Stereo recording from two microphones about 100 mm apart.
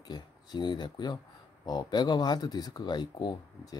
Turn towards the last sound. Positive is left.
turn(degrees=45)  # may be behind; listen again after turning